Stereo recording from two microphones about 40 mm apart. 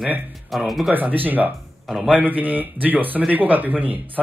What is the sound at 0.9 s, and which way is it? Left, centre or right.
Speech, right.